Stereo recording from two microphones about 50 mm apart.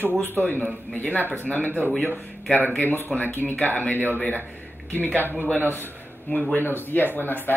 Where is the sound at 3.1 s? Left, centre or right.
Left.